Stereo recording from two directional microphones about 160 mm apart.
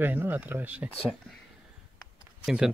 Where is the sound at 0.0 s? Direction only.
10° right (ahead or behind).